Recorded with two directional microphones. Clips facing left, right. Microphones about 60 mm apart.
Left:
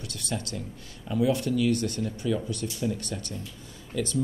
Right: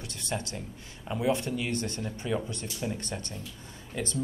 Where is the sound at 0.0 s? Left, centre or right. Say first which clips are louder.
Left 1 dB; right.